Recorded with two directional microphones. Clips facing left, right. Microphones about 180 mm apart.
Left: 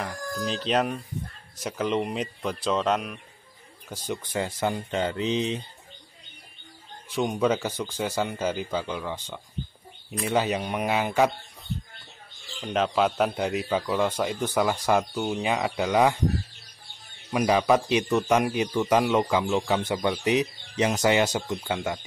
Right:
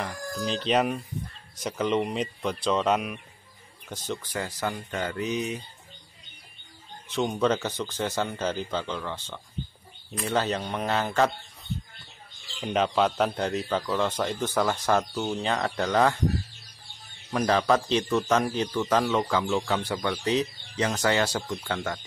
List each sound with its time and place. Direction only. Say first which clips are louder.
0.0 s speech: left 1 dB; centre (ahead or behind)
3.9 s speech: left 1 dB; 10° left (ahead or behind)
4.2 s speech: left 7 dB; 25° left (ahead or behind)
7.1 s speech: left 1 dB; 10° left (ahead or behind)
12.5 s speech: even; 5° right (ahead or behind); by 16.2 s 10° left (ahead or behind)
17.3 s speech: left 2 dB; 15° left (ahead or behind)